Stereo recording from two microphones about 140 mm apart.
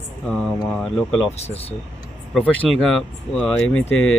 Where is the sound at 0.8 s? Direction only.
5° left (ahead or behind).